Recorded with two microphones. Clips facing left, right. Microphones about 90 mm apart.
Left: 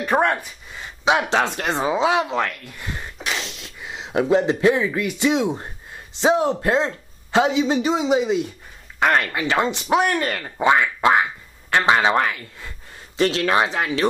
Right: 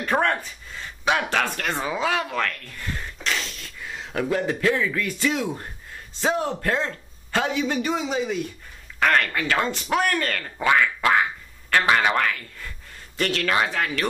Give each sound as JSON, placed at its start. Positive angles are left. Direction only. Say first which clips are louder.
{"t": 0.0, "sound": "a man's voice", "louder": "left 3 dB", "side_deg": 15}